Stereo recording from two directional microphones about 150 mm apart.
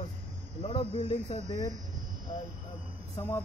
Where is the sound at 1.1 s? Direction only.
30° left (ahead or behind).